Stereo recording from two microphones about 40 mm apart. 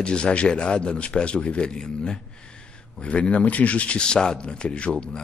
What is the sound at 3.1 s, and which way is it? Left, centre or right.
Sanding, left.